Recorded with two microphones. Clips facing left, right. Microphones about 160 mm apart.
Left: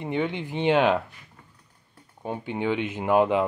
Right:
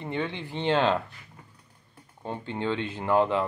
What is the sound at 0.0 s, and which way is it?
Speech, 15° left (ahead or behind).